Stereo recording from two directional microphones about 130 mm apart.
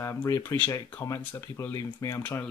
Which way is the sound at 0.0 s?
25° left (ahead or behind).